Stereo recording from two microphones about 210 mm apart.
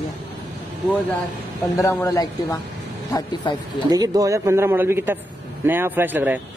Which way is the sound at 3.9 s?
15° right (ahead or behind).